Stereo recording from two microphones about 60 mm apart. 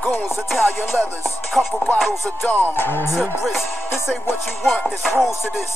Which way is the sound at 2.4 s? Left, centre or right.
Left.